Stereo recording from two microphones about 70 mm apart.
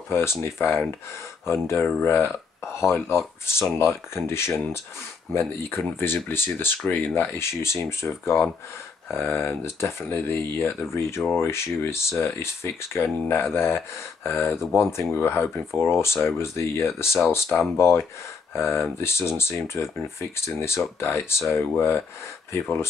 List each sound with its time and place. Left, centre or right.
0.1 s speech: left